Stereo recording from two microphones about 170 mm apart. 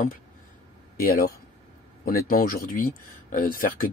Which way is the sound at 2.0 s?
55° left (ahead or behind).